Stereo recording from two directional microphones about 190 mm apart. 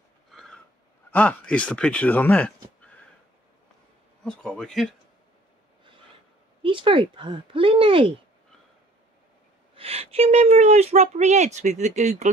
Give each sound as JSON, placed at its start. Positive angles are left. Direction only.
{"t": 0.3, "sound": "a sound", "side_deg": 0}
{"t": 1.1, "sound": "speech", "side_deg": 10}
{"t": 4.2, "sound": "speech", "side_deg": 5}
{"t": 6.6, "sound": "speech", "side_deg": -25}
{"t": 9.8, "sound": "speech", "side_deg": -30}